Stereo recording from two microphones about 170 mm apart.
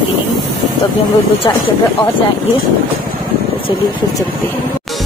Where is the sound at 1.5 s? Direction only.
20° left (ahead or behind).